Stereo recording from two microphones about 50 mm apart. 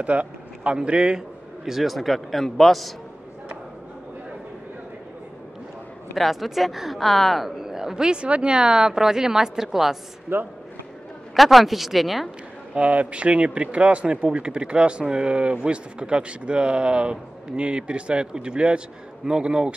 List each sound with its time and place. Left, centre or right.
0.0 s a man's voice: right
1.7 s a man's voice: centre
6.1 s speech: centre
10.3 s speech: right
11.3 s a man's voice: centre
12.7 s a man's voice: right